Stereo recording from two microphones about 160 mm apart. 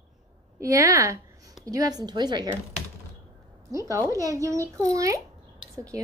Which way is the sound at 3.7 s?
20° right (ahead or behind).